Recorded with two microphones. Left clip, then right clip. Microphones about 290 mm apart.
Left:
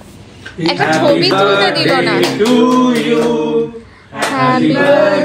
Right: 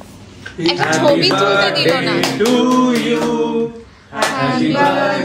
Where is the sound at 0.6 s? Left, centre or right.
Centre.